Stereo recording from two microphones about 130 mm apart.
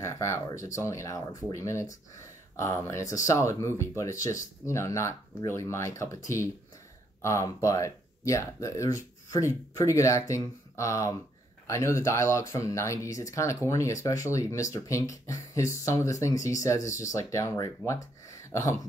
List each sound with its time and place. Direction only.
0.0 s speech: 20° left (ahead or behind)